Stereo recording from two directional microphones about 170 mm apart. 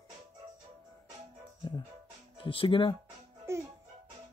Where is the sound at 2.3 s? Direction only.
30° left (ahead or behind).